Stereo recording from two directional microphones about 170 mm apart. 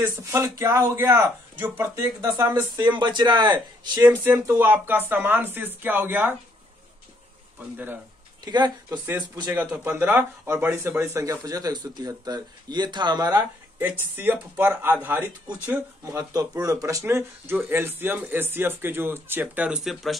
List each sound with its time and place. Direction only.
0.0 s speech: 20° right (ahead or behind)
4.1 s speech: 10° right (ahead or behind)
7.7 s speech: 10° right (ahead or behind)
8.5 s speech: 25° right (ahead or behind)
8.9 s speech: 10° right (ahead or behind)
13.7 s speech: 10° right (ahead or behind)